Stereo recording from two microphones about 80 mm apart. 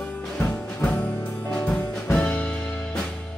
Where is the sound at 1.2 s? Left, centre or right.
Left.